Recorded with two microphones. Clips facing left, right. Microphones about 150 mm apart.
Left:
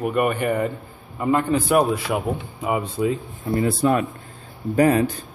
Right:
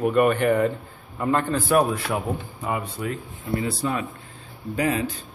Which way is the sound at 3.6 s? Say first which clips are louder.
Left 10 dB; 55° left (ahead or behind).